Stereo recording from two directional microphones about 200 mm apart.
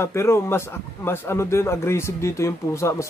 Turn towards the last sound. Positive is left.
turn(degrees=15)  # may be behind; listen again after turning